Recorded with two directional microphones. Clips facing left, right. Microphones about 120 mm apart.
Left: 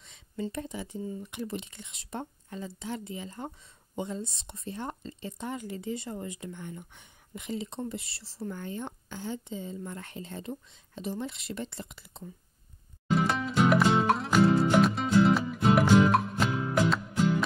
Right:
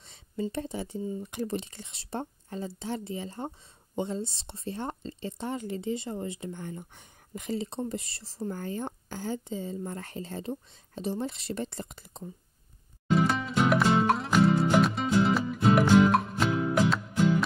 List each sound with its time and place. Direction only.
0.5 s a woman's voice: 35° right (ahead or behind)
13.1 s music: centre (ahead or behind)